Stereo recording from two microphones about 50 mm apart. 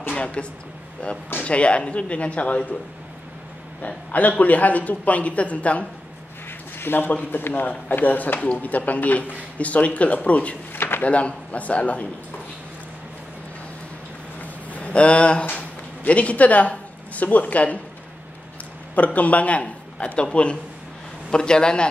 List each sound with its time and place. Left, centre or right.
0.1 s a man's voice: left
3.8 s a man's voice: left
6.8 s speech: left
10.7 s drawer open or close: left
11.1 s a man's voice: left
14.4 s a sound: left
16.1 s speech: left
18.9 s a man's voice: left